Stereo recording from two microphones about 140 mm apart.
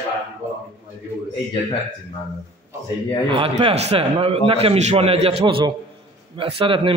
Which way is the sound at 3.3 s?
40° right (ahead or behind).